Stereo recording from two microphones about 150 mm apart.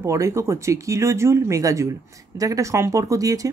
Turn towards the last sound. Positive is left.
turn(degrees=-20)  # may be behind; listen again after turning